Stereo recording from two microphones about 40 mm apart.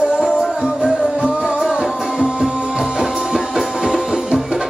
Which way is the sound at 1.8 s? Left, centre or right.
Centre.